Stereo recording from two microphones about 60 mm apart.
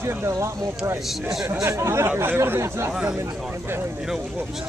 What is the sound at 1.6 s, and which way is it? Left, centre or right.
Speech, right.